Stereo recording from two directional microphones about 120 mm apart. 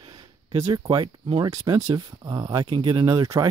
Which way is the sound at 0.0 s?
40° right (ahead or behind).